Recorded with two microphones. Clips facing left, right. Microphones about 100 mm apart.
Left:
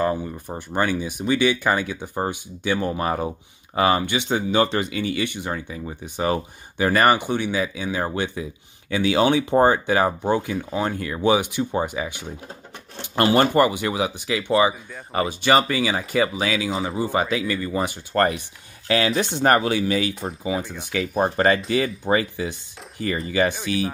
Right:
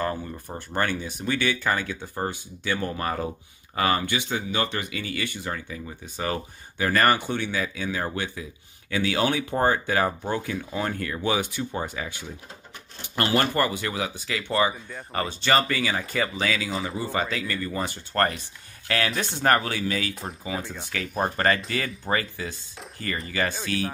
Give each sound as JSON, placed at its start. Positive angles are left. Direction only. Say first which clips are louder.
{"t": 0.0, "sound": "speech", "louder": "left 6 dB", "side_deg": 15}
{"t": 13.1, "sound": "speech", "louder": "left 6 dB", "side_deg": 30}
{"t": 22.0, "sound": "speech", "louder": "left 6 dB", "side_deg": 15}